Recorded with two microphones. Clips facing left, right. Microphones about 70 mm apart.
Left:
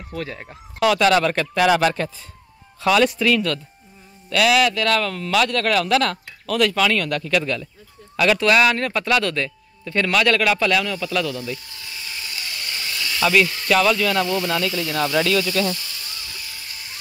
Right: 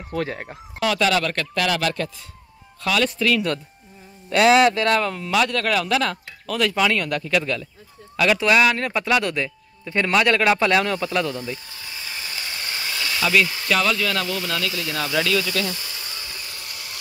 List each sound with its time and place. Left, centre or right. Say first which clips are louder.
0.1 s speech: right 4 dB; right
0.7 s speech: left 4 dB; centre
1.2 s speech: left 5 dB; centre
4.3 s speech: right 2 dB; right
11.1 s snake: even; right
13.2 s speech: left 2 dB; centre
15.7 s a sound: left 1 dB; right